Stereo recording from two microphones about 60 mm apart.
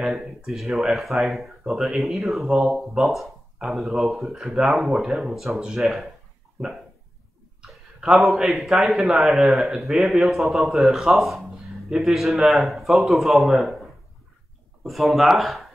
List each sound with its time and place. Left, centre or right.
0.0 s a man's voice: centre
4.3 s speech: centre
4.6 s a man's voice: centre
8.3 s a man's voice: centre
14.8 s a man's voice: centre